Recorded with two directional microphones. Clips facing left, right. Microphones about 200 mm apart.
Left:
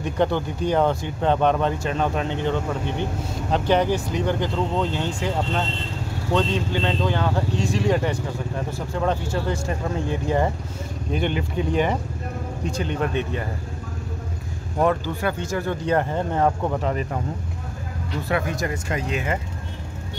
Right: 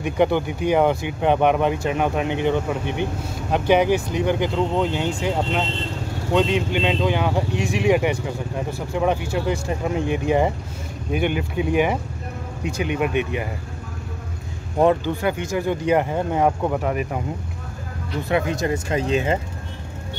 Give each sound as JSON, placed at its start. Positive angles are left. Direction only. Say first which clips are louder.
{"t": 0.0, "sound": "speech", "louder": "right 3 dB", "side_deg": -15}
{"t": 14.8, "sound": "speech", "louder": "right 3 dB", "side_deg": -20}
{"t": 18.3, "sound": "speech", "louder": "right 4 dB", "side_deg": -20}